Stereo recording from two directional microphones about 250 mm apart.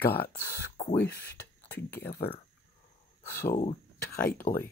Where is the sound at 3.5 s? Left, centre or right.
Left.